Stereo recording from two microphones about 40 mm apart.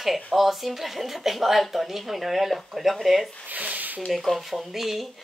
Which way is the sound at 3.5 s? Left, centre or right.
Right.